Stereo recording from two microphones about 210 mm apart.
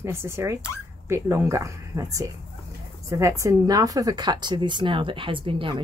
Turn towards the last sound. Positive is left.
turn(degrees=-25)  # may be behind; listen again after turning